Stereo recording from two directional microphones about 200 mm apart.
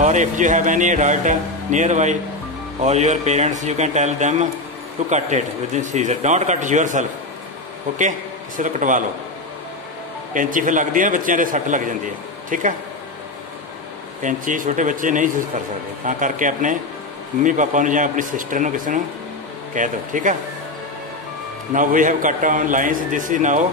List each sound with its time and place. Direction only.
0.0 s speech: 40° right (ahead or behind)
8.5 s speech: 40° right (ahead or behind)
10.3 s speech: 40° right (ahead or behind)
14.2 s speech: 40° right (ahead or behind)
21.7 s speech: 40° right (ahead or behind)